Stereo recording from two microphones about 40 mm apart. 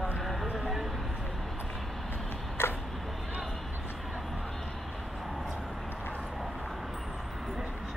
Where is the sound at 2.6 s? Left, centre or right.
Left.